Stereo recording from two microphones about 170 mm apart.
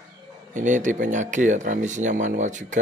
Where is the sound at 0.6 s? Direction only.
45° right (ahead or behind).